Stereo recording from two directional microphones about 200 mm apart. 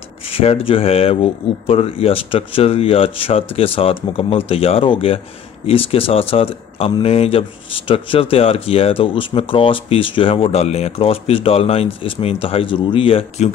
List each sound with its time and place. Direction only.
0.3 s speech: 30° left (ahead or behind)